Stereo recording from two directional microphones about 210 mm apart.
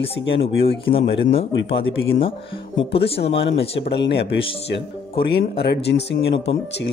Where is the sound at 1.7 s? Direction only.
60° left (ahead or behind).